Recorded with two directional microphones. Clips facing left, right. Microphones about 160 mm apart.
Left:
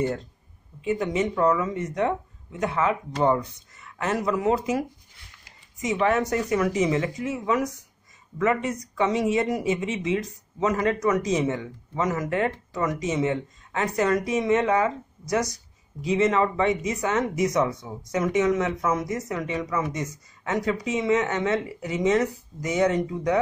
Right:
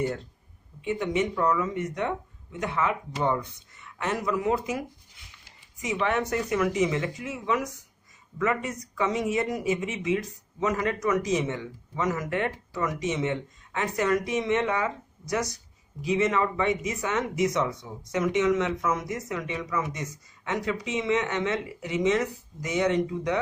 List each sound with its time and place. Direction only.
0.8 s speech: 40° left (ahead or behind)
5.8 s speech: 40° left (ahead or behind)